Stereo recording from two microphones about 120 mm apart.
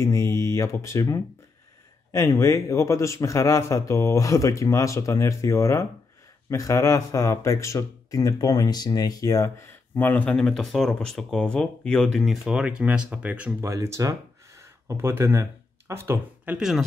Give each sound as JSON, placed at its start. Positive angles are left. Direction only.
{"t": 0.0, "sound": "a man's voice", "side_deg": 25}
{"t": 13.6, "sound": "speech", "side_deg": -25}
{"t": 16.5, "sound": "speech", "side_deg": -5}